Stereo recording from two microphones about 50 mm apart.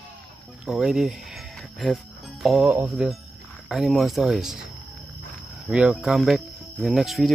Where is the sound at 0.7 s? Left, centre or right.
Centre.